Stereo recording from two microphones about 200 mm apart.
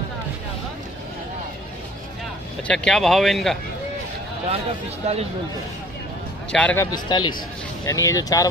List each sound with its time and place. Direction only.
2.7 s speech: 5° left (ahead or behind)
5.1 s speech: 30° right (ahead or behind)
6.5 s speech: 10° left (ahead or behind)
6.9 s speech: 20° left (ahead or behind)